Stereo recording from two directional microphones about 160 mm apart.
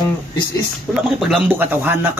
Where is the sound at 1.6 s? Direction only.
10° right (ahead or behind).